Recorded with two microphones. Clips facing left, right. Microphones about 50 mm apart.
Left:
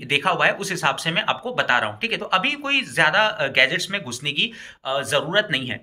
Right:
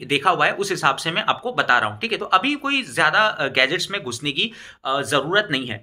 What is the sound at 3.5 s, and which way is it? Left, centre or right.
Speech, left.